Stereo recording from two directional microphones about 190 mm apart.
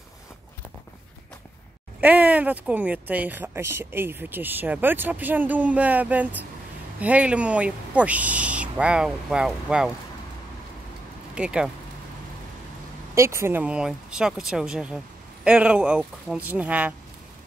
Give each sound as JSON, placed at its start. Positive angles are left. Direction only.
{"t": 2.0, "sound": "speech", "side_deg": -10}
{"t": 11.3, "sound": "speech", "side_deg": -5}
{"t": 13.1, "sound": "speech", "side_deg": -15}